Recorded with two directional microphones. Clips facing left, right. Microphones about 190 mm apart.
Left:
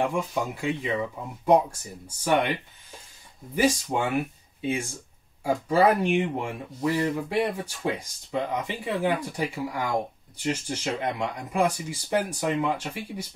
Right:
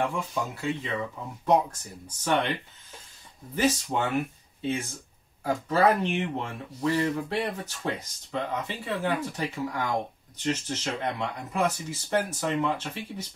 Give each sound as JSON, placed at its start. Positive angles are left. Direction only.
{"t": 0.0, "sound": "speech", "side_deg": 15}
{"t": 3.5, "sound": "speech", "side_deg": 10}